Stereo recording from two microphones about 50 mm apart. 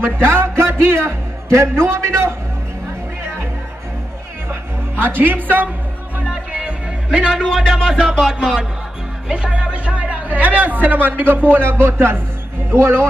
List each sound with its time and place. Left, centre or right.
0.0 s music: right
1.5 s a man's voice: right
4.5 s music: right
6.2 s a man's voice: centre; by 13.0 s right